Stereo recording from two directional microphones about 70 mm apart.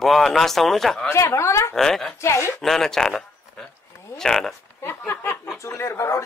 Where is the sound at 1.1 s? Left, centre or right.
Left.